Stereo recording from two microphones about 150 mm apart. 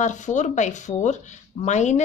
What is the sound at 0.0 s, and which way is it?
Speech, 55° left (ahead or behind).